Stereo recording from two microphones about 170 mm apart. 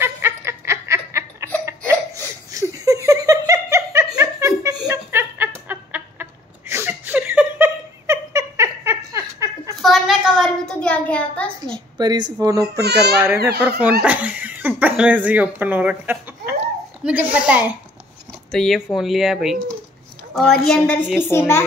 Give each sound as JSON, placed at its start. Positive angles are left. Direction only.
{"t": 0.0, "sound": "snicker", "side_deg": -15}
{"t": 2.5, "sound": "giggle", "side_deg": -20}
{"t": 6.7, "sound": "a sound", "side_deg": -10}
{"t": 9.8, "sound": "a sound", "side_deg": 0}
{"t": 11.6, "sound": "a child's voice", "side_deg": -25}
{"t": 13.6, "sound": "speech", "side_deg": -10}
{"t": 21.2, "sound": "a woman's voice", "side_deg": 15}